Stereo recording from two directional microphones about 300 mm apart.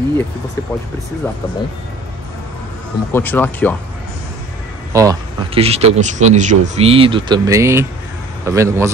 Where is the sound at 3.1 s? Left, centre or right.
Centre.